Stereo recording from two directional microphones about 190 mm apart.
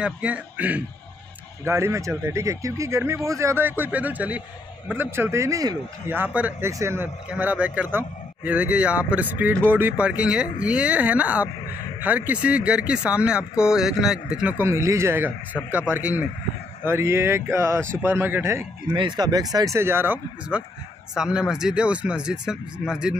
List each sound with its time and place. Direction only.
0.0 s a man's voice: 5° right (ahead or behind)
18.9 s a man's voice: 20° right (ahead or behind); by 23.1 s 5° right (ahead or behind)